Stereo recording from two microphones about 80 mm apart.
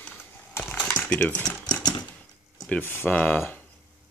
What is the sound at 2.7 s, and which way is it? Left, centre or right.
Speech, left.